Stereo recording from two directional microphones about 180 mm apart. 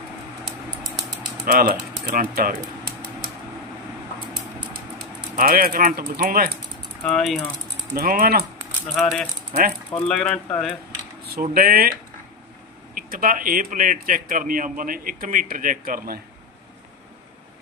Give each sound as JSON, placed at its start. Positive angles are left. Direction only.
{"t": 1.4, "sound": "speech", "side_deg": -55}
{"t": 5.3, "sound": "speech", "side_deg": -55}
{"t": 7.0, "sound": "speech", "side_deg": 5}
{"t": 7.9, "sound": "speech", "side_deg": -55}
{"t": 8.9, "sound": "speech", "side_deg": 5}
{"t": 11.5, "sound": "speech", "side_deg": -55}
{"t": 12.9, "sound": "speech", "side_deg": -50}